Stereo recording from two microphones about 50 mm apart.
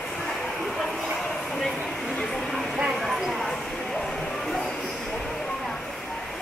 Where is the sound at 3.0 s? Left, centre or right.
Centre.